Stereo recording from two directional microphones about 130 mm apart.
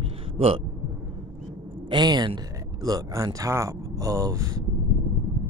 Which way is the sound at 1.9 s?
35° right (ahead or behind).